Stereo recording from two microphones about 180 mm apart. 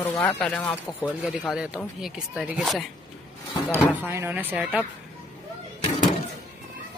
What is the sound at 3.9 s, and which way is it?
Speech, 10° right (ahead or behind).